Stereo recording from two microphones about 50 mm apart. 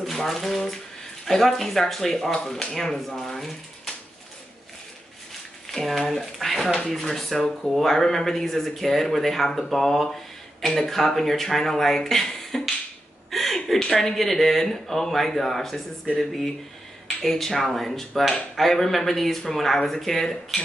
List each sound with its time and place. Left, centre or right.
0.0 s speech: centre
5.7 s speech: centre
13.3 s a sound: centre
13.7 s speech: centre